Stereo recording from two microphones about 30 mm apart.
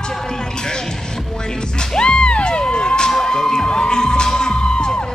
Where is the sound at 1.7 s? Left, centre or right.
Left.